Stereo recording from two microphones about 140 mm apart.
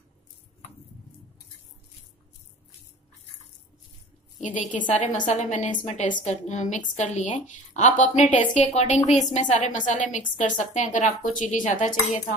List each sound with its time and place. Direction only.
4.6 s a woman's voice: 65° left (ahead or behind)